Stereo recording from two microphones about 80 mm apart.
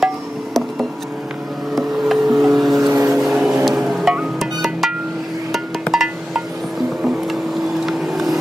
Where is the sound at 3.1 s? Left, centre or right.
Centre.